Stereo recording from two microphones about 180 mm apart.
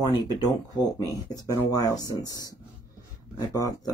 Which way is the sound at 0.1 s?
20° left (ahead or behind).